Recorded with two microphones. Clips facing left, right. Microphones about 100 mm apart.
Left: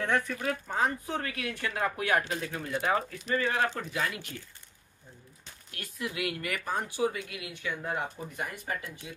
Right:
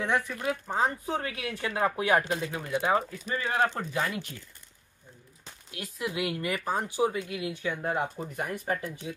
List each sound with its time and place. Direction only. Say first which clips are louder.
0.0 s speech: right 1 dB; 10° right (ahead or behind)
0.7 s speech: right 2 dB; 25° right (ahead or behind)
2.5 s speech: right 2 dB; 10° right (ahead or behind)
3.6 s speech: right 2 dB; 35° right (ahead or behind)
5.7 s speech: right 3 dB; 20° right (ahead or behind)
8.4 s speech: right 5 dB; 45° right (ahead or behind)